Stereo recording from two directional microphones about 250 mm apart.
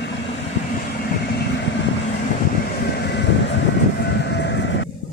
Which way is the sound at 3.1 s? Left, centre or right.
Left.